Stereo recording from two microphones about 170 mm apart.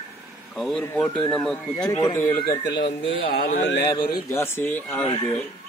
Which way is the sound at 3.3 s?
65° left (ahead or behind).